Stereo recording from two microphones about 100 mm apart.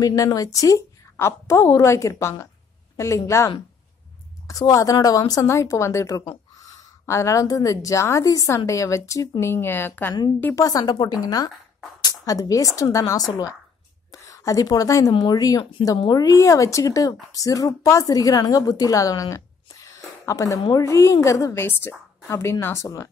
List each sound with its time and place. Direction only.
0.0 s speech: 35° left (ahead or behind)
10.5 s a woman's voice: 35° left (ahead or behind)